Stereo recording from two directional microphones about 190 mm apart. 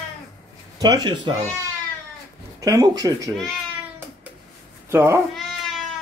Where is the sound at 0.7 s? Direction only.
20° right (ahead or behind).